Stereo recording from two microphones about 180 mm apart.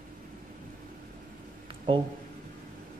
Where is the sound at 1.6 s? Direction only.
30° right (ahead or behind).